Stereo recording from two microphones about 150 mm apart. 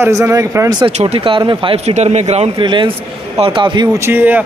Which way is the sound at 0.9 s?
45° right (ahead or behind).